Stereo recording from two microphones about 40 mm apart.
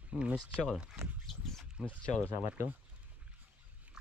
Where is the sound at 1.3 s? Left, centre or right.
Centre.